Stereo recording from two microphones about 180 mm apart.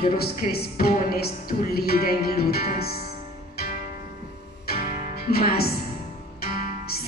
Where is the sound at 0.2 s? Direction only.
60° left (ahead or behind).